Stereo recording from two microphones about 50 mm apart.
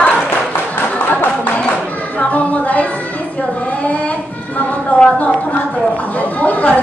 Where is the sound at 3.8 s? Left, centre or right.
Left.